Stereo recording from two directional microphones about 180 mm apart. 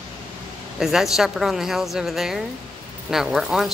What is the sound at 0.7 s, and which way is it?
A woman's voice, centre (ahead or behind).